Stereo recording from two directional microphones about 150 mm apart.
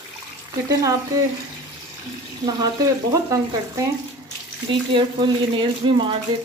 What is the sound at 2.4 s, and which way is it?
Speech, 25° right (ahead or behind).